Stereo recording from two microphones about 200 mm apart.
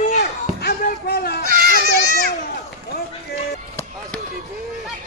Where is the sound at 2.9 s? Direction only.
50° left (ahead or behind).